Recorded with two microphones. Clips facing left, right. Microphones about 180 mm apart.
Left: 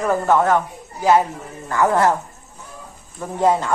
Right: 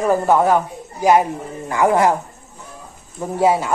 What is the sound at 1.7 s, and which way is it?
Speech, 15° right (ahead or behind).